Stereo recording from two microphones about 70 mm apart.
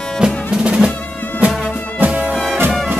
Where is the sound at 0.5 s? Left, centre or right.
Centre.